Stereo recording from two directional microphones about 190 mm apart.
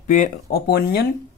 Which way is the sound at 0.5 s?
55° left (ahead or behind).